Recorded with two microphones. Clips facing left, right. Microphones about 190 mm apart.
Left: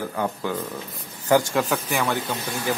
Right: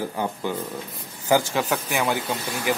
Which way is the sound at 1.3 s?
5° right (ahead or behind).